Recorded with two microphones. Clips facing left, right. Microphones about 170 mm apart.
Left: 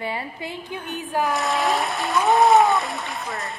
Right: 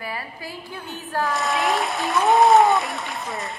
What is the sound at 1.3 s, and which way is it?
Speech, centre (ahead or behind).